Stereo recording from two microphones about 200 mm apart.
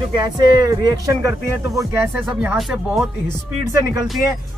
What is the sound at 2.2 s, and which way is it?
Speech, 5° right (ahead or behind).